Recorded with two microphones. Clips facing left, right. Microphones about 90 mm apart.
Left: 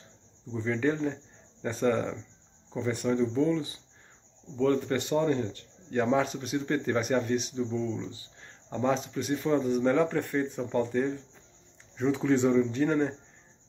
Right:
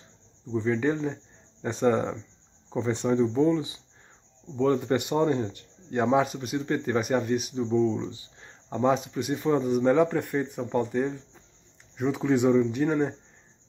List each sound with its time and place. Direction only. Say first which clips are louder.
0.5 s speech: right 3 dB; 15° right (ahead or behind)
6.2 s speech: right 2 dB; 5° right (ahead or behind)
7.5 s speech: right 6 dB; 25° right (ahead or behind)